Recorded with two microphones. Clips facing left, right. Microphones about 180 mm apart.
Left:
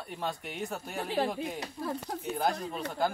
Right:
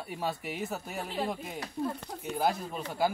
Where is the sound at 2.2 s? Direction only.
Centre (ahead or behind).